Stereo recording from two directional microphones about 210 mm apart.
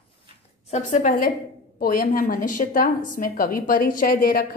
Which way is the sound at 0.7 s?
35° left (ahead or behind).